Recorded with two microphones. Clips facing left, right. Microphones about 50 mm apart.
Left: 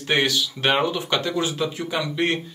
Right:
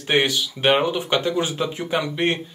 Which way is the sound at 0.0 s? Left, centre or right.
Centre.